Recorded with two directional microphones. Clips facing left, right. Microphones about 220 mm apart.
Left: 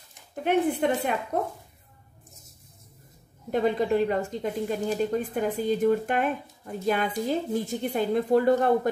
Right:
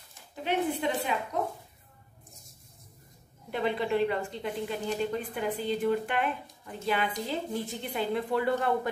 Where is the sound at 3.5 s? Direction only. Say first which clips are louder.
Left 5 dB; 45° left (ahead or behind).